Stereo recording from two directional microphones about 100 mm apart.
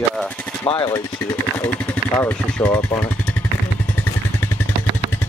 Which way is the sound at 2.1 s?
20° left (ahead or behind).